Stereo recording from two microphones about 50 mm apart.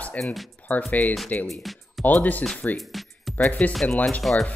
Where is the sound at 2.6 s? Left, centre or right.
Left.